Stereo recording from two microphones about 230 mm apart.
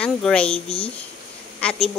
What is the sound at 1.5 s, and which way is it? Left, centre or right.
Speech, centre.